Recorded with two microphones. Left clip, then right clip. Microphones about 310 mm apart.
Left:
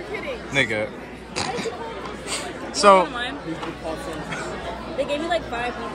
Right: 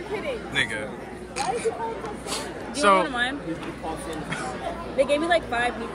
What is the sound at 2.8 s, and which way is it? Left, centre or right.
Speech, centre.